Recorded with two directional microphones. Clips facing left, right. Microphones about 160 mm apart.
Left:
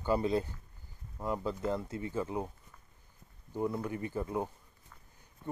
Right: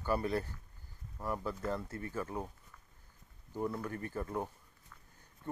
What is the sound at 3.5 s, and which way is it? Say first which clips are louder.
Speech: left 3 dB; 15° left (ahead or behind).